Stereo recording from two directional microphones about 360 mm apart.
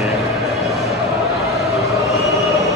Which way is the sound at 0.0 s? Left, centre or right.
Centre.